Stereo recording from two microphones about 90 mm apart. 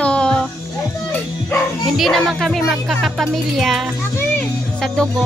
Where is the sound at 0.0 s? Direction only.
10° left (ahead or behind).